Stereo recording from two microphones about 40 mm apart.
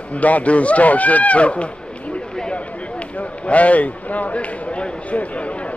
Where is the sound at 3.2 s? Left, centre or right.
Left.